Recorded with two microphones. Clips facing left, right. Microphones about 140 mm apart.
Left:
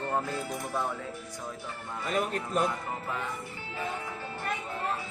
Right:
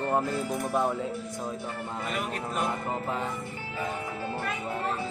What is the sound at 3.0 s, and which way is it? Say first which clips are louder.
Music: right 4 dB; 30° right (ahead or behind).